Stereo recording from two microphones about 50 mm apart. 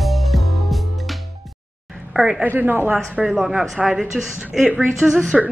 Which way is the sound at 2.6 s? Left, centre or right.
Right.